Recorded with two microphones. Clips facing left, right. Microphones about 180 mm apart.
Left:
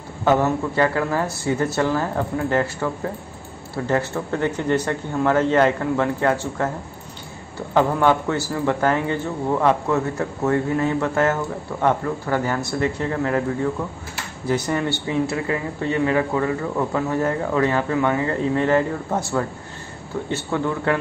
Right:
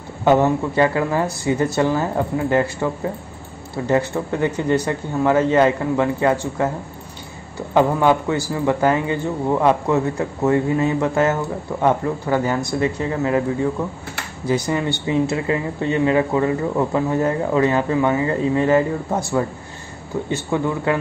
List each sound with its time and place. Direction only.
0.2 s speech: 15° right (ahead or behind)
7.7 s speech: 10° right (ahead or behind)